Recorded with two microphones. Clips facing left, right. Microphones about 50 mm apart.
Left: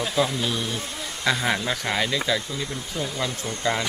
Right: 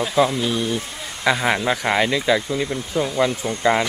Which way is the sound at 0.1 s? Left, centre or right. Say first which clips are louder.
Right 7 dB; centre.